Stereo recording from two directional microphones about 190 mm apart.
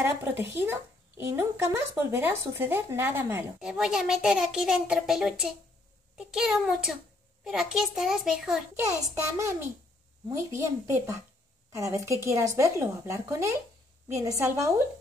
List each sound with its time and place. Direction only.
0.0 s a child's voice: 10° right (ahead or behind)
9.4 s speech: 15° right (ahead or behind)